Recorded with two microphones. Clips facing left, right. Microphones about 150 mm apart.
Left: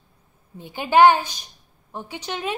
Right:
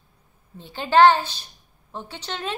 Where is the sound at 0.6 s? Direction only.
15° left (ahead or behind).